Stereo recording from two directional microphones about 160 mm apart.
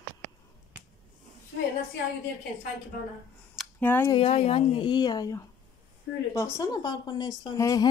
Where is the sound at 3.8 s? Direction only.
10° left (ahead or behind).